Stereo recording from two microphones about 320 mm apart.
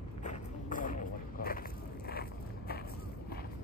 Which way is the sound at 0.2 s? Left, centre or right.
Left.